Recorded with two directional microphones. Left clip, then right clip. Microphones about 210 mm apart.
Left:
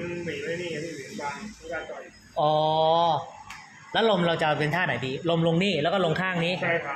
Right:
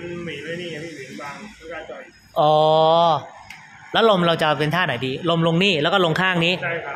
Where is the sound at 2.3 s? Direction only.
35° right (ahead or behind).